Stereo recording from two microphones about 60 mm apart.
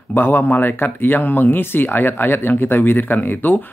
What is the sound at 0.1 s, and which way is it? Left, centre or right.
Speech, left.